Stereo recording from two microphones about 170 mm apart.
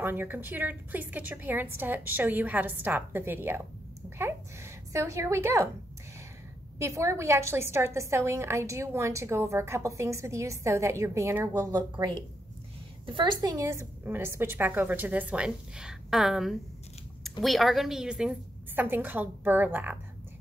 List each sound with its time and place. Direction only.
0.0 s a woman's voice: 10° right (ahead or behind)
6.8 s a woman's voice: 15° right (ahead or behind)